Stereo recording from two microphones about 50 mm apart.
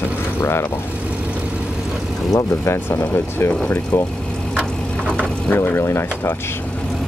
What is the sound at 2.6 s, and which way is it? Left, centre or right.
Speech, left.